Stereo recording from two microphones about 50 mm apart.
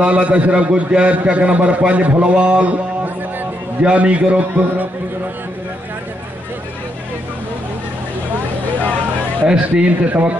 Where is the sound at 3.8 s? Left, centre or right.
Right.